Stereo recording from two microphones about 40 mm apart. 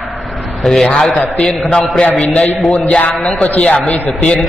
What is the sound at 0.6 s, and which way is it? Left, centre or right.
Speech, centre.